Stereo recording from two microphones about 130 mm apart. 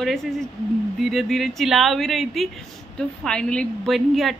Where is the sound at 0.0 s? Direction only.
Centre (ahead or behind).